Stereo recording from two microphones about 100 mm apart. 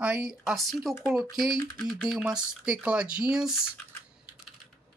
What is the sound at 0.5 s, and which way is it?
Speech, centre (ahead or behind).